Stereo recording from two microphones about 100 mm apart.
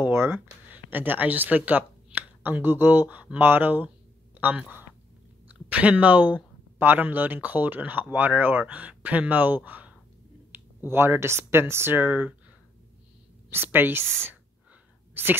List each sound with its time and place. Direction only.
0.0 s speech: 25° right (ahead or behind)
9.7 s a sound: 15° right (ahead or behind)
10.9 s speech: 25° right (ahead or behind)
13.5 s speech: 20° right (ahead or behind)
15.2 s speech: 20° right (ahead or behind)